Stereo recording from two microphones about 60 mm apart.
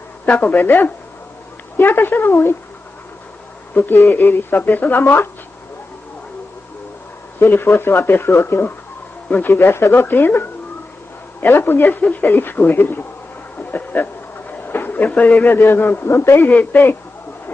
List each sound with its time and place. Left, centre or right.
0.2 s speech: left
3.8 s speech: left
7.3 s speech: left
11.4 s speech: left
13.6 s a sound: left
14.7 s speech: left
15.4 s a man's voice: left